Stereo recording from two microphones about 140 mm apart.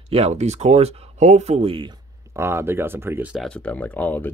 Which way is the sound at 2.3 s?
20° right (ahead or behind).